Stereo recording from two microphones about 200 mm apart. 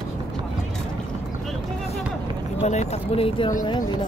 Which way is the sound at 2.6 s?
30° left (ahead or behind).